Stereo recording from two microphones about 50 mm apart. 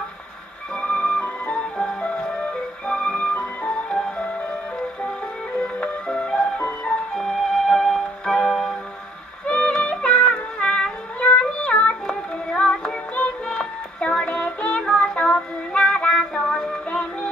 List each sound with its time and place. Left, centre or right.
0.7 s music: left
5.6 s music: left
7.2 s music: centre
9.5 s music: left
11.1 s child singing: left
12.8 s music: left
13.5 s music: centre
14.8 s music: centre
15.1 s music: left